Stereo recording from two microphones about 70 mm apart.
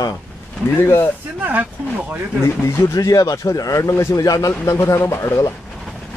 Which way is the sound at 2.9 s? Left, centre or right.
Left.